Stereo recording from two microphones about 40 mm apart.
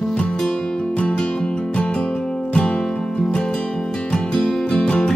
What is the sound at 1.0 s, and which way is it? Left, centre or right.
Music, left.